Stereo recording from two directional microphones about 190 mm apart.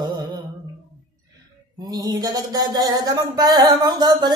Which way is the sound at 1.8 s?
20° right (ahead or behind).